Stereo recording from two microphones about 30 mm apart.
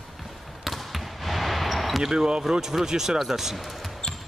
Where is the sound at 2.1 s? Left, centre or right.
Right.